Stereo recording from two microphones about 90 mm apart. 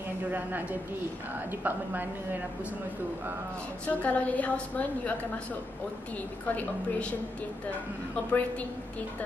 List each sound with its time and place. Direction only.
0.3 s a woman's voice: 20° right (ahead or behind)
3.8 s a woman's voice: 15° left (ahead or behind)
6.5 s a woman's voice: 15° left (ahead or behind)
8.3 s a woman's voice: 15° left (ahead or behind)